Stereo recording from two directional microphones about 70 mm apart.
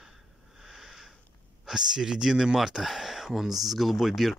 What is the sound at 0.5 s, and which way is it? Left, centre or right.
Sniff, centre.